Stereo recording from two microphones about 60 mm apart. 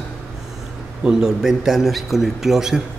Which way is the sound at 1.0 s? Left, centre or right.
Centre.